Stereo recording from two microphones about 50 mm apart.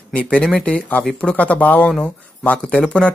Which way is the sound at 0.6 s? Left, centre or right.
Left.